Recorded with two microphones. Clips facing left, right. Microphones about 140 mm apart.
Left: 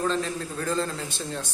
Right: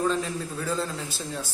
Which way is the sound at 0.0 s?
5° right (ahead or behind).